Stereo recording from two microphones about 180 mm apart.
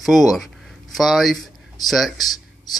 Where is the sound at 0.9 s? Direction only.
Centre (ahead or behind).